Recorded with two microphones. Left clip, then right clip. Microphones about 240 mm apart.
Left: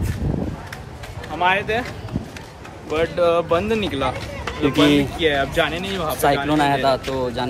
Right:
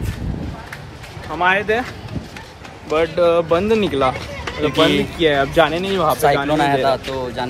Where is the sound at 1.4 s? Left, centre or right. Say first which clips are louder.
Right 3 dB; right.